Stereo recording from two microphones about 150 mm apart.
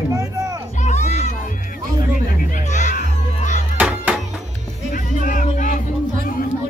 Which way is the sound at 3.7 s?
10° right (ahead or behind).